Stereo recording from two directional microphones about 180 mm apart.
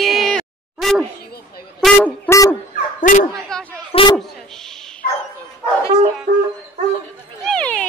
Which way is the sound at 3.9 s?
30° left (ahead or behind).